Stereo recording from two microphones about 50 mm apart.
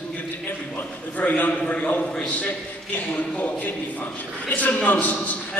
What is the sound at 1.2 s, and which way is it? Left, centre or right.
Speech, left.